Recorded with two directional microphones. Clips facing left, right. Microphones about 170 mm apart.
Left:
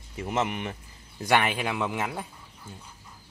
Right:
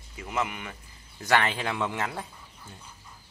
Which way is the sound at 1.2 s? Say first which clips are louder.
Left 1 dB; 15° left (ahead or behind).